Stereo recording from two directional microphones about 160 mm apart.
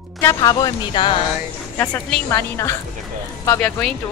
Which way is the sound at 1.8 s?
10° left (ahead or behind).